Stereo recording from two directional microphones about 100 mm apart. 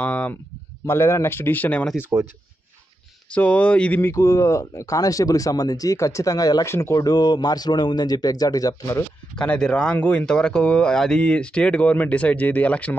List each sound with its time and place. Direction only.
0.0 s speech: 15° left (ahead or behind)
0.8 s speech: 25° left (ahead or behind)
3.3 s speech: 15° left (ahead or behind)
4.0 s speech: 30° left (ahead or behind)
9.4 s speech: 10° left (ahead or behind)